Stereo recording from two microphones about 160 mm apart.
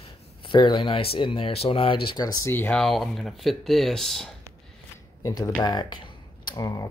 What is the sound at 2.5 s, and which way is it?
Speech, 15° left (ahead or behind).